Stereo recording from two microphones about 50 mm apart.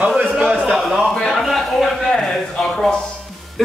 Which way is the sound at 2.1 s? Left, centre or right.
Centre.